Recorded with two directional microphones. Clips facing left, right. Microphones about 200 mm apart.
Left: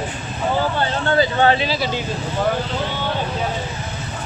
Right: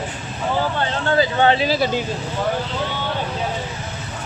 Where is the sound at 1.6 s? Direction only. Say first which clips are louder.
Right 3 dB; 50° right (ahead or behind).